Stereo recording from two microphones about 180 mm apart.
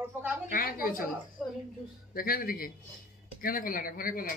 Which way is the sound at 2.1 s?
55° left (ahead or behind).